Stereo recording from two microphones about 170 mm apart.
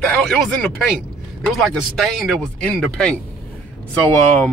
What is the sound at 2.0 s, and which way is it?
Speech, centre (ahead or behind).